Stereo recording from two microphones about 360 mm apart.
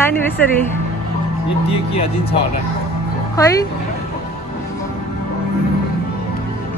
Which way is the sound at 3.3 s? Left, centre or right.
Centre.